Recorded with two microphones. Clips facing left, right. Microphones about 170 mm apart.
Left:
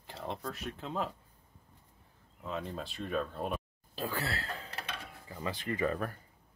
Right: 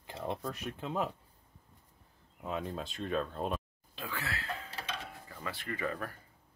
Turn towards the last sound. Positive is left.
turn(degrees=20)  # may be behind; listen again after turning